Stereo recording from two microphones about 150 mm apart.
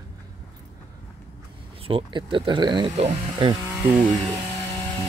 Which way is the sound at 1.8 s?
35° right (ahead or behind).